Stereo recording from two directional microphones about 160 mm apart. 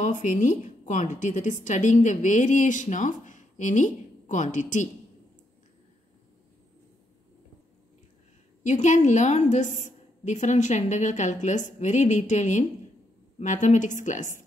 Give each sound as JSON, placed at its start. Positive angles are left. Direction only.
{"t": 0.0, "sound": "a woman's voice", "side_deg": 55}
{"t": 8.6, "sound": "a woman's voice", "side_deg": 50}